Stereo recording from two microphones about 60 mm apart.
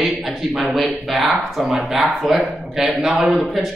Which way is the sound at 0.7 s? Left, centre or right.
Centre.